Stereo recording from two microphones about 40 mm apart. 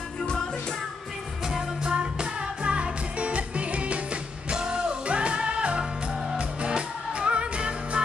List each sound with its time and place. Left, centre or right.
1.4 s music: centre